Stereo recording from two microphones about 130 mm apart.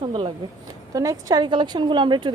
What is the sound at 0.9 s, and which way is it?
A woman's voice, 25° right (ahead or behind).